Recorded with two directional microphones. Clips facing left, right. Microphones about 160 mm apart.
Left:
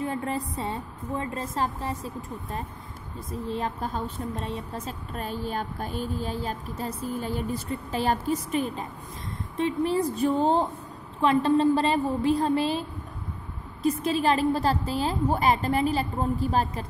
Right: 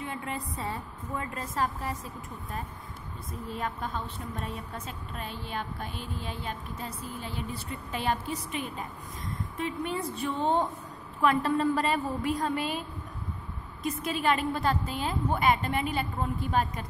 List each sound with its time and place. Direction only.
0.0 s a woman's voice: 40° left (ahead or behind)
0.6 s a woman's voice: 25° left (ahead or behind)
3.4 s a woman's voice: 30° left (ahead or behind)
13.8 s speech: 30° left (ahead or behind)